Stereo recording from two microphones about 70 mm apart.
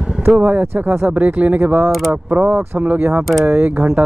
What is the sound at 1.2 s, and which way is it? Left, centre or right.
Speech, right.